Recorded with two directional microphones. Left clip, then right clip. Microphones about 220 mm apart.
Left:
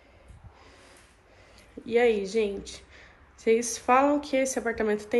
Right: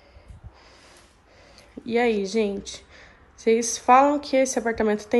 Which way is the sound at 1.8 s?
10° right (ahead or behind).